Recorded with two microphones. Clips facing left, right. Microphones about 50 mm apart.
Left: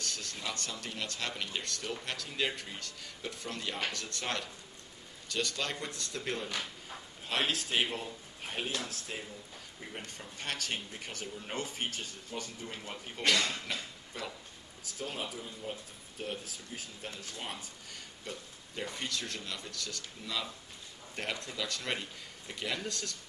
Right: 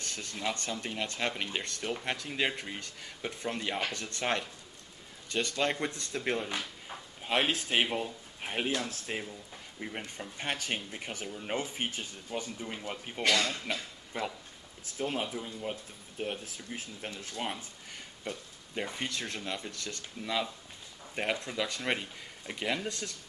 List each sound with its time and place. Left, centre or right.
0.0 s speech: right
13.3 s speech: centre
14.1 s speech: right